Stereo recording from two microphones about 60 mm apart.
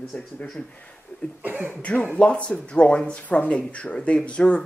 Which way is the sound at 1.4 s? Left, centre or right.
Right.